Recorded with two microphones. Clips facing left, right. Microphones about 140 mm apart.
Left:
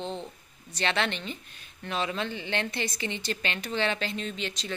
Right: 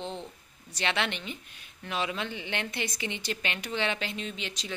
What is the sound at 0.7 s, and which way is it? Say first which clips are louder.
Speech: left 2 dB; 10° right (ahead or behind).